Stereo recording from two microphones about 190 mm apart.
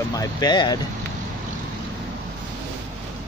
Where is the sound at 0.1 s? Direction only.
20° left (ahead or behind).